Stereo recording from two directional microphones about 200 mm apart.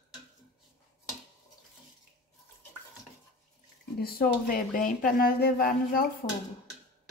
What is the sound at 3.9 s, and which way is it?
Speech, 50° left (ahead or behind).